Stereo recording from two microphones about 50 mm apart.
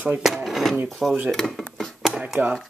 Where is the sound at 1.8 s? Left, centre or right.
Centre.